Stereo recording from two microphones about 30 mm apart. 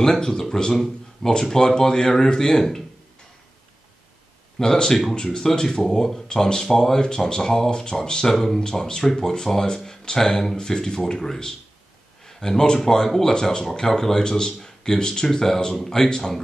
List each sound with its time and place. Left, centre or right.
0.0 s speech: centre
4.6 s speech: left
5.4 s speech: centre
15.3 s speech: centre